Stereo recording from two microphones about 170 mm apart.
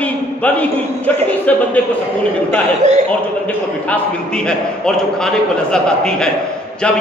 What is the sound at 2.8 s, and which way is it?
Speech, 45° right (ahead or behind).